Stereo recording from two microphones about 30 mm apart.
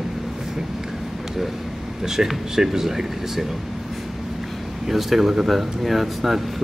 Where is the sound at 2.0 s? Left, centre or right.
Centre.